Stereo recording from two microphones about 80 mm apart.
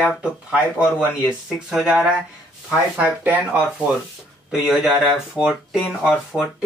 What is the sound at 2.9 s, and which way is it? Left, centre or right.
Speech, centre.